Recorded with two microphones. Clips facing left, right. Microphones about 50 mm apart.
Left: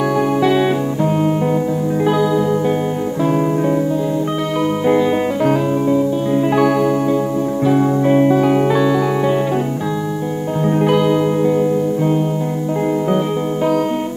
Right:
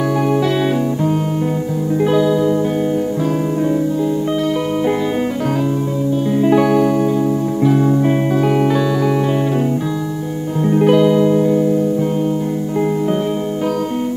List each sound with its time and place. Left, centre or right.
2.0 s music: centre
6.3 s music: centre
10.8 s music: centre